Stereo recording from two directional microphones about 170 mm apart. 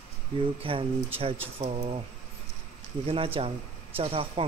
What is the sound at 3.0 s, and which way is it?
Speech, 35° right (ahead or behind).